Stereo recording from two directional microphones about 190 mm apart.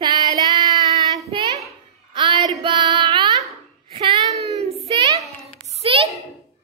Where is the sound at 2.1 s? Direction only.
25° right (ahead or behind).